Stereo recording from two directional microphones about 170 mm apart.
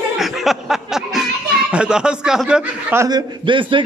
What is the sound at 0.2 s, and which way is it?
Speech, centre (ahead or behind).